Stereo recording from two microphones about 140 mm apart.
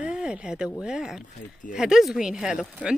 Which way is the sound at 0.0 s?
5° right (ahead or behind).